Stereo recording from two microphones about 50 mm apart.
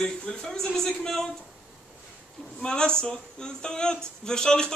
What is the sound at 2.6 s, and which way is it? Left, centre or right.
Speech, centre.